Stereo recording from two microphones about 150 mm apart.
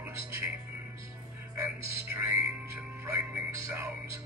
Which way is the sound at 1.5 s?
20° right (ahead or behind).